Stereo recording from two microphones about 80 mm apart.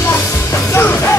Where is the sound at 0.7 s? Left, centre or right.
Left.